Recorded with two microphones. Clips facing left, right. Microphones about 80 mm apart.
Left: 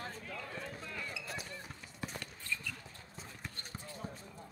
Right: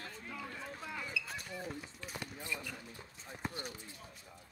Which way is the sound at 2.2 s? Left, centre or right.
Centre.